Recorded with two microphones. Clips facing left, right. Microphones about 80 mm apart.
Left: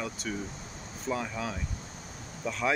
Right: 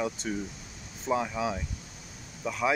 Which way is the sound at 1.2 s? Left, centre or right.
Centre.